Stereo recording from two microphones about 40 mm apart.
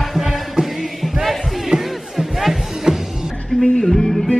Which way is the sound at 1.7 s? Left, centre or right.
Right.